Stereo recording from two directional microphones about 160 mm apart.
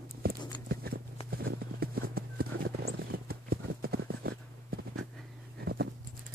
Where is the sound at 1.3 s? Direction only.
70° right (ahead or behind).